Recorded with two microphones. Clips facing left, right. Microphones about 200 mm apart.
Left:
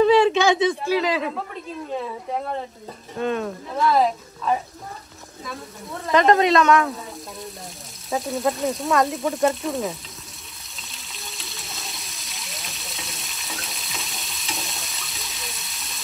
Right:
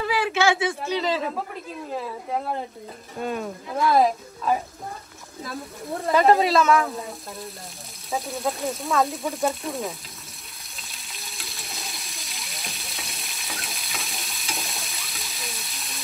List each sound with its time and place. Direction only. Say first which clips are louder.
0.0 s a sound: left 7 dB; 20° left (ahead or behind)
1.0 s speech: left 1 dB; centre (ahead or behind)
6.1 s speech: left 2 dB; 5° right (ahead or behind)
8.1 s speech: left 4 dB; centre (ahead or behind)
10.8 s water: left 2 dB; centre (ahead or behind)